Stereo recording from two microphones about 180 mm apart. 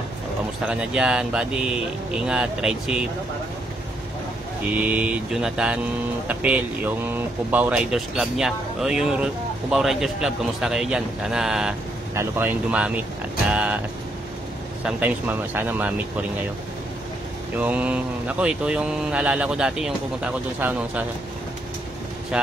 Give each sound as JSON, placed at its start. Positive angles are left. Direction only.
{"t": 0.7, "sound": "speech", "side_deg": -5}
{"t": 4.7, "sound": "speech", "side_deg": -10}
{"t": 14.9, "sound": "speech", "side_deg": -10}
{"t": 17.6, "sound": "speech", "side_deg": -10}
{"t": 22.3, "sound": "speech", "side_deg": -5}